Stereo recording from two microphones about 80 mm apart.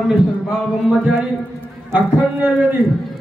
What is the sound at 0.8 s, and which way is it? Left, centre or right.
Speech, centre.